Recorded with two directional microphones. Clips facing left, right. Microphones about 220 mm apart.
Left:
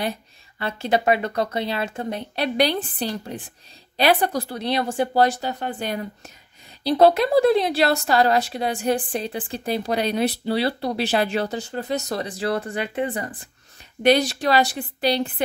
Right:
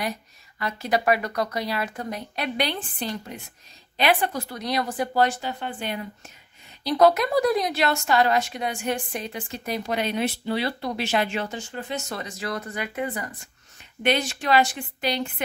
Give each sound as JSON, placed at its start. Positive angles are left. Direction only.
{"t": 0.6, "sound": "speech", "side_deg": 30}
{"t": 6.8, "sound": "speech", "side_deg": 30}